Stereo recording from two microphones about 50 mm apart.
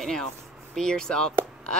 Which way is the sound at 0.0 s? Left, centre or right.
Centre.